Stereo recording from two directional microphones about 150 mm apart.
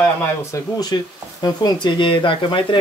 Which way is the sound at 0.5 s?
25° left (ahead or behind).